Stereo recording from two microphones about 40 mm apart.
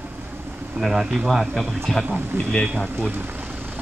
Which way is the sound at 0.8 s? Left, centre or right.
Centre.